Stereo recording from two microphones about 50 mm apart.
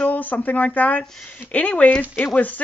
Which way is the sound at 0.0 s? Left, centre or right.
Left.